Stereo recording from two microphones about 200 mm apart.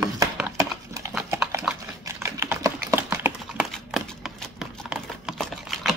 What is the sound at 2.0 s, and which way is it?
Typing, 15° right (ahead or behind).